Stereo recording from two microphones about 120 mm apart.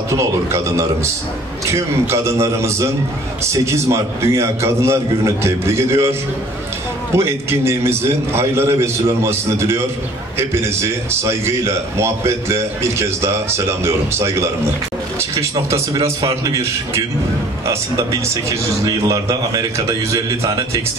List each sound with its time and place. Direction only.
0.1 s a man's voice: 25° right (ahead or behind)
7.2 s a man's voice: 20° right (ahead or behind)